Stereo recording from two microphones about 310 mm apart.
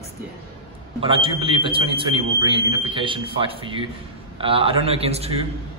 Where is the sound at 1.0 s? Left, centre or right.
Centre.